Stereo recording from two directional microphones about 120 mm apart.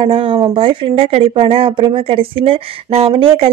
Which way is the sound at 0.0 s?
45° right (ahead or behind).